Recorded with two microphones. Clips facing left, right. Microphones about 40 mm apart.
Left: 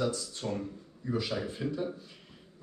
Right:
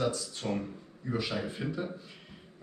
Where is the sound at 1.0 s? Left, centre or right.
Right.